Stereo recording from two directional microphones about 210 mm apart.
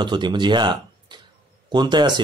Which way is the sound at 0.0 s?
20° right (ahead or behind).